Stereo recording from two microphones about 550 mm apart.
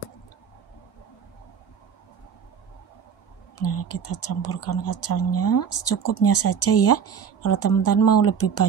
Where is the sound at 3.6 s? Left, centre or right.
Left.